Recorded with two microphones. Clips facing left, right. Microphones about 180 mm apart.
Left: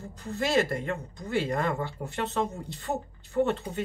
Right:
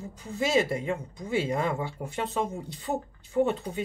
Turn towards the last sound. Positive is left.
turn(degrees=-10)  # may be behind; listen again after turning